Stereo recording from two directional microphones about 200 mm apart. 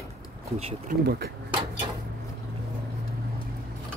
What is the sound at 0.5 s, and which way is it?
Speech, 30° right (ahead or behind).